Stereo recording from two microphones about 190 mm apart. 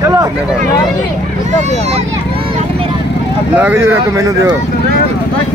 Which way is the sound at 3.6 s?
10° right (ahead or behind).